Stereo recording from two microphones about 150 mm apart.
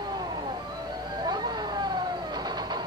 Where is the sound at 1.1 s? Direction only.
30° right (ahead or behind).